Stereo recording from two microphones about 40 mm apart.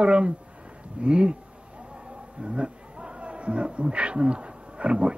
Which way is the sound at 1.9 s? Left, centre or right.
Right.